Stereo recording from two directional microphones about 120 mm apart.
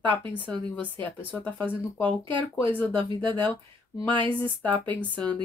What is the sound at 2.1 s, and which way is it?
Speech, 45° right (ahead or behind).